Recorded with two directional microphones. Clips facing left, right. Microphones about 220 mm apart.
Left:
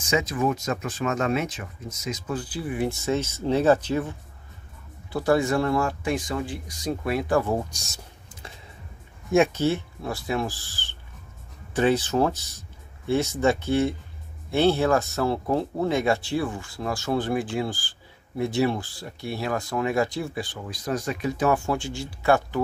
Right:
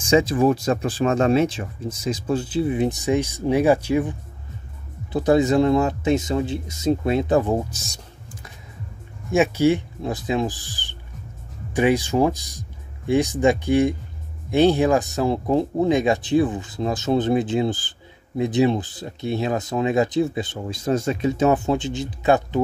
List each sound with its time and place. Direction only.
0.0 s speech: 30° right (ahead or behind)
7.7 s speech: centre (ahead or behind)
9.3 s speech: 5° right (ahead or behind)